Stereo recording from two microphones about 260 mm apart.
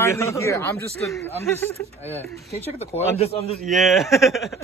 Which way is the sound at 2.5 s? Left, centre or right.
Centre.